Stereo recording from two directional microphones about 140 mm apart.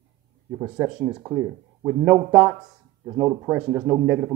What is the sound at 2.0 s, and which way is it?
Speech, 10° right (ahead or behind).